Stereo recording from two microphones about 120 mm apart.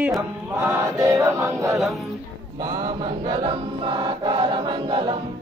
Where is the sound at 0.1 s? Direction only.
25° right (ahead or behind).